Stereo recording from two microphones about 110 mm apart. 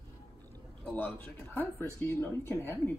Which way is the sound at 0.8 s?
15° left (ahead or behind).